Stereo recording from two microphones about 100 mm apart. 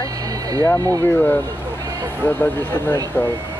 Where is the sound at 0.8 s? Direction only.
35° right (ahead or behind).